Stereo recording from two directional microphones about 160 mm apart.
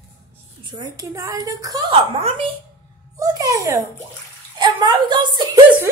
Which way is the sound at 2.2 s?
35° right (ahead or behind).